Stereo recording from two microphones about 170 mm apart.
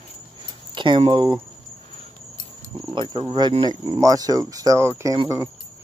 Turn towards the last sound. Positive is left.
turn(degrees=-25)  # may be behind; listen again after turning